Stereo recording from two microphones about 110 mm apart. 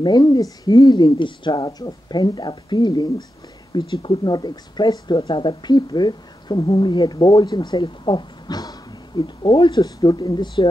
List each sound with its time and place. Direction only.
0.0 s speech: 40° left (ahead or behind)